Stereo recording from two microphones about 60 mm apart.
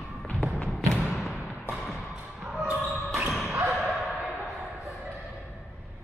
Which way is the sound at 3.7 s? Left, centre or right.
Centre.